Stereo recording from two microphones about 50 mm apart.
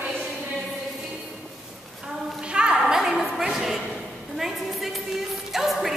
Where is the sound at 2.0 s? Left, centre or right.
Centre.